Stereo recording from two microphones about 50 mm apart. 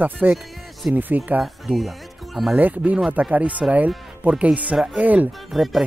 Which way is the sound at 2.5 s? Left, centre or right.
Right.